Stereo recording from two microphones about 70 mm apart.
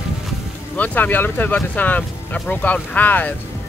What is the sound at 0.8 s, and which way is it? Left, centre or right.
Speech, left.